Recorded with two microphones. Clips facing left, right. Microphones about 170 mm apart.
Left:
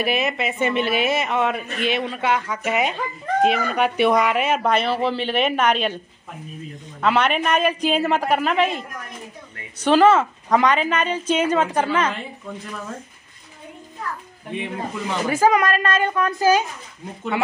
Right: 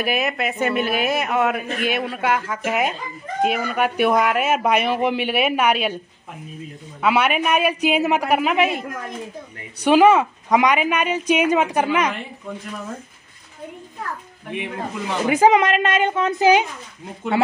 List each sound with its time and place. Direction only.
0.0 s a woman's voice: centre (ahead or behind)
7.0 s speech: 10° right (ahead or behind)
14.5 s speech: 15° right (ahead or behind)